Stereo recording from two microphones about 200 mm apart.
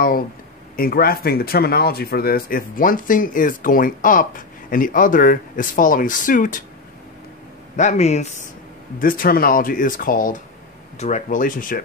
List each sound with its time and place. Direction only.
0.7 s speech: 45° left (ahead or behind)
7.7 s speech: 35° left (ahead or behind)
9.0 s speech: 45° left (ahead or behind)